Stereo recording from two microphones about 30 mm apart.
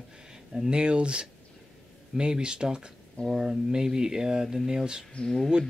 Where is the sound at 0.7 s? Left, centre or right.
Right.